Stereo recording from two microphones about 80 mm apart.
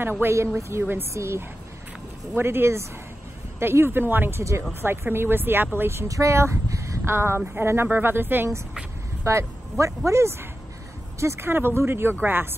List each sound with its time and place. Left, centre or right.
0.2 s speech: right
9.2 s speech: right